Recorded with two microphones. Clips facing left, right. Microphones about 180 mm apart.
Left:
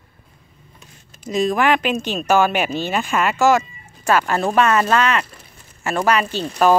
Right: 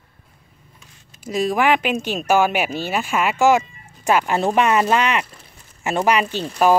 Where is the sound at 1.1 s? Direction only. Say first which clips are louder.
Left 1 dB; 10° right (ahead or behind).